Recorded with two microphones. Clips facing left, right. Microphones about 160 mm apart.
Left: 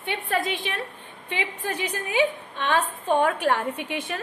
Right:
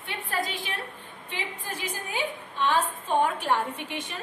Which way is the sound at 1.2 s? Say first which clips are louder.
Left 6 dB; 70° left (ahead or behind).